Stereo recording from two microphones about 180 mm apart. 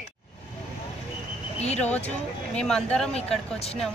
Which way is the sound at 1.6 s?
35° left (ahead or behind).